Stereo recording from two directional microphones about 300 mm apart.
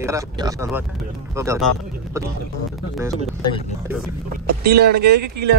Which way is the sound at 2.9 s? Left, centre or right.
Centre.